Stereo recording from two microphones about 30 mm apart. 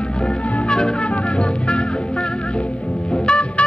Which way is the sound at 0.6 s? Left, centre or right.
Left.